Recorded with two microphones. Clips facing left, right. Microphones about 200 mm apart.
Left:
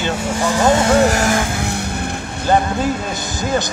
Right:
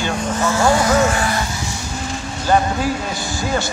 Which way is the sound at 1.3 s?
55° left (ahead or behind).